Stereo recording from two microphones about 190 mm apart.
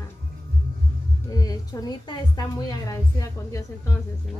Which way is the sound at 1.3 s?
20° left (ahead or behind).